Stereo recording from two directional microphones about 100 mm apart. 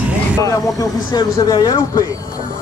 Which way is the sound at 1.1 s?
45° left (ahead or behind).